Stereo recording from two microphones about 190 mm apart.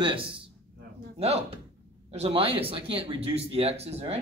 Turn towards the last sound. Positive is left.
turn(degrees=-35)  # may be behind; listen again after turning